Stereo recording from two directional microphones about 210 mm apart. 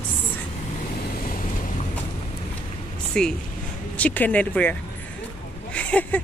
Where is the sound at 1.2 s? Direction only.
40° left (ahead or behind).